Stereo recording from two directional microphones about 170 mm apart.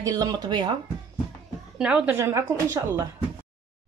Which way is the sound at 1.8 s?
5° right (ahead or behind).